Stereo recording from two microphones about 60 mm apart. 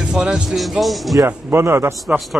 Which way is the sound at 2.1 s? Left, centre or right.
Right.